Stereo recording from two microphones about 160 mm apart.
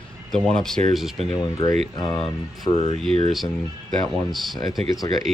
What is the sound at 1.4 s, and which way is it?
Speech, 30° left (ahead or behind).